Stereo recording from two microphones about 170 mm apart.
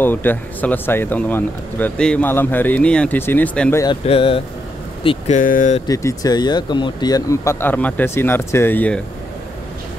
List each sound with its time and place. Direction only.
0.0 s speech: 10° left (ahead or behind)
3.8 s speech: 30° left (ahead or behind)
5.3 s speech: 50° left (ahead or behind)
5.9 s speech: 20° left (ahead or behind)